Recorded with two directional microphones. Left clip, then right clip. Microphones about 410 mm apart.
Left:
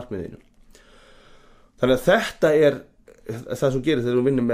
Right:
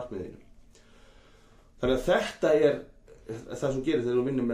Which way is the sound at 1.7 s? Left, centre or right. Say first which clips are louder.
Left 7 dB; left.